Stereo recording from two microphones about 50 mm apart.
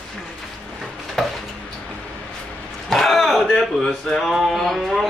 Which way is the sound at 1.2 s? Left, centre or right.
Centre.